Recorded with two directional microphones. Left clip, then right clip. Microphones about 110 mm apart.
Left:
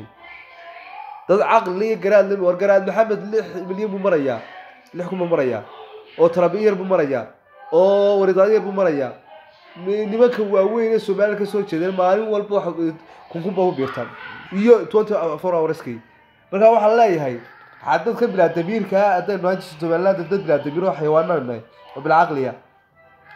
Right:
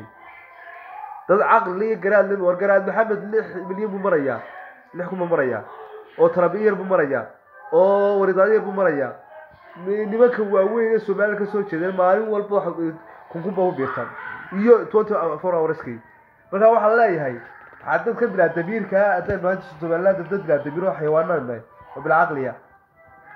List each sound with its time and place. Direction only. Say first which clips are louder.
1.2 s a man's voice: left 1 dB; 10° left (ahead or behind)
17.8 s a man's voice: left 2 dB; 5° left (ahead or behind)